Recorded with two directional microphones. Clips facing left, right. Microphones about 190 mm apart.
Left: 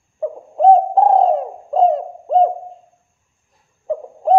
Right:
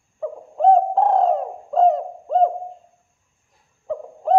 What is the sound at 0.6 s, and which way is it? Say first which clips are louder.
Bird: left 4 dB; 25° left (ahead or behind).